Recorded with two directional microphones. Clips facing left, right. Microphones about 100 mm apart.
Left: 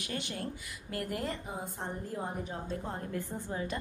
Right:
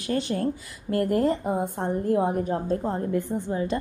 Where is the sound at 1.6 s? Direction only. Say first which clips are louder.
Right 12 dB; 60° right (ahead or behind).